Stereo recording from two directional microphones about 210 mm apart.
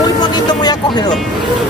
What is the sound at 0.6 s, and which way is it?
Music, 20° left (ahead or behind).